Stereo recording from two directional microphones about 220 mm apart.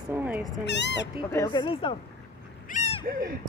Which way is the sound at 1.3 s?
15° left (ahead or behind).